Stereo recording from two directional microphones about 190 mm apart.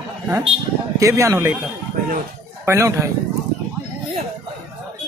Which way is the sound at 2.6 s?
15° right (ahead or behind).